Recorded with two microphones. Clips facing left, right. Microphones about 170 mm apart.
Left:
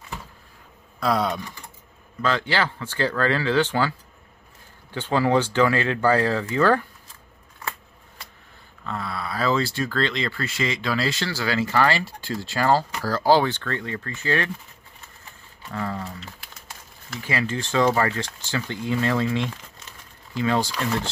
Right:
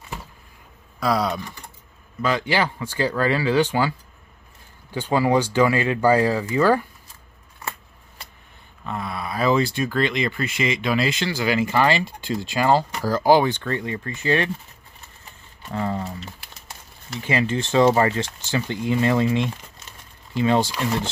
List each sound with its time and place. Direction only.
0.9 s speech: centre (ahead or behind)
2.2 s speech: 15° right (ahead or behind)
4.9 s speech: 10° right (ahead or behind)
8.8 s speech: 15° right (ahead or behind)
15.7 s speech: 20° right (ahead or behind)